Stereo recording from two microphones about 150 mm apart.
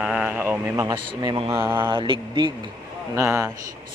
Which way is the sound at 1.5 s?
15° right (ahead or behind).